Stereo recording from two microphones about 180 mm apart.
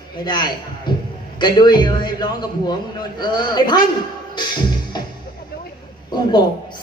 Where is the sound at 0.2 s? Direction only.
25° left (ahead or behind).